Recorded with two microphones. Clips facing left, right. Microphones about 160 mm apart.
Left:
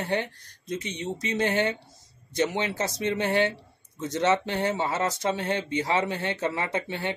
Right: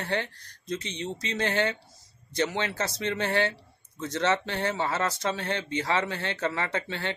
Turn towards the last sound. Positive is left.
turn(degrees=15)  # may be behind; listen again after turning